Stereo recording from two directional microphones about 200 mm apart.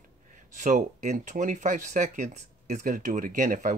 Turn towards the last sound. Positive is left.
turn(degrees=-40)  # may be behind; listen again after turning